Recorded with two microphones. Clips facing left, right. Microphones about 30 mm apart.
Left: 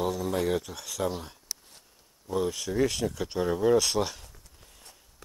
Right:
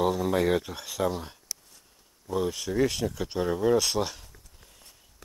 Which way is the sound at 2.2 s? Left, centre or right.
Centre.